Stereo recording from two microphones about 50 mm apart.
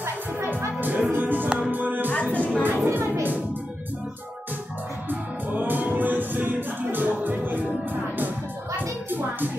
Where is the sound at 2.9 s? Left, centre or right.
Right.